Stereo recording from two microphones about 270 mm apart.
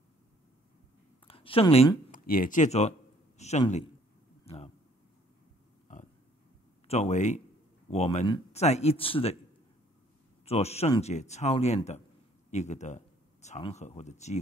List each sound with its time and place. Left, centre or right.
1.2 s speech: left
4.5 s a sound: left
6.9 s speech: left
10.4 s speech: left